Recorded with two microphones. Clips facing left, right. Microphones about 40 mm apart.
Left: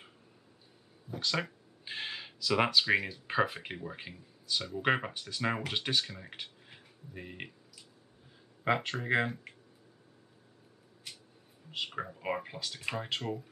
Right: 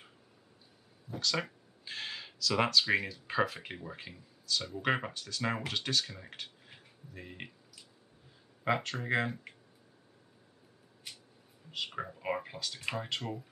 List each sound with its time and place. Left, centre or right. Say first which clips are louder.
1.2 s a sound: even; centre
2.5 s speech: left 1 dB; centre
3.5 s speech: left 2 dB; centre
6.0 s speech: left 1 dB; centre
6.4 s a sound: left 1 dB; centre
8.6 s speech: left 2 dB; centre
11.7 s speech: left 1 dB; centre